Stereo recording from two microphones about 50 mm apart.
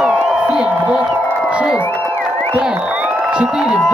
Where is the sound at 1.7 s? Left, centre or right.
Left.